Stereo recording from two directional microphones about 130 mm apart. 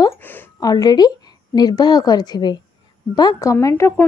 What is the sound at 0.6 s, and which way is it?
A woman's voice, 30° left (ahead or behind).